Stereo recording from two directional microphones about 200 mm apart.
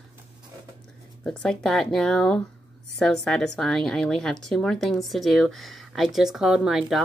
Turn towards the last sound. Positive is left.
turn(degrees=0)  # may be behind; listen again after turning